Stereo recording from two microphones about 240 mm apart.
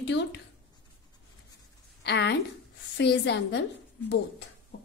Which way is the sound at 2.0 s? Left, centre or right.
Left.